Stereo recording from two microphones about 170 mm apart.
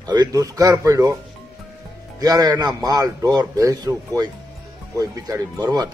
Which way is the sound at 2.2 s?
20° right (ahead or behind).